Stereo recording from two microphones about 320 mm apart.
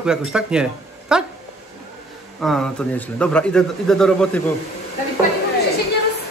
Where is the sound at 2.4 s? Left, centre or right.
Centre.